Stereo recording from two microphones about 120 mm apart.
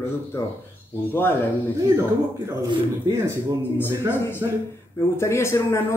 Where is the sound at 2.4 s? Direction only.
25° right (ahead or behind).